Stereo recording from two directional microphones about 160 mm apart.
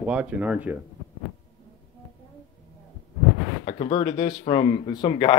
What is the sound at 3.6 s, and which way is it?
Speech, 40° left (ahead or behind).